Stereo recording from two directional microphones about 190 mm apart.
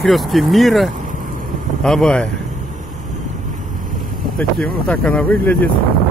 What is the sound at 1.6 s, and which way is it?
Speech, 5° left (ahead or behind).